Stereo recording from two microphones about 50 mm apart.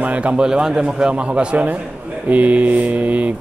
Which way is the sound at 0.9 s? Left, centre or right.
Centre.